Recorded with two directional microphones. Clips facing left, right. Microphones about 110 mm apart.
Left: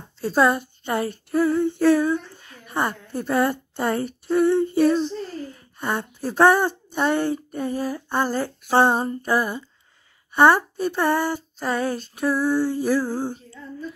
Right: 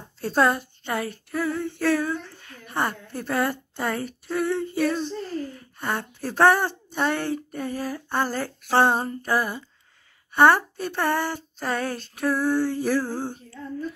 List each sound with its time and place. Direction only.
0.2 s a woman's voice: 5° left (ahead or behind)
0.9 s female singing: 30° left (ahead or behind)
1.6 s a sound: 20° left (ahead or behind)
2.3 s a woman's voice: 15° left (ahead or behind)
5.8 s speech: 15° left (ahead or behind)